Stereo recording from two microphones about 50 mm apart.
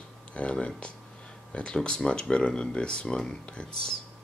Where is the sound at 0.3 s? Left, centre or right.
Left.